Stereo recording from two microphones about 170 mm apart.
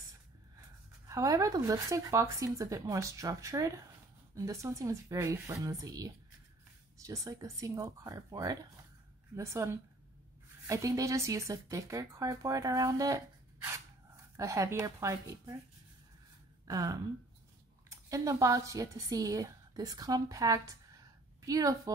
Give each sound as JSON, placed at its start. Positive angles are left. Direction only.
{"t": 1.0, "sound": "a woman's voice", "side_deg": -20}
{"t": 16.6, "sound": "speech", "side_deg": -20}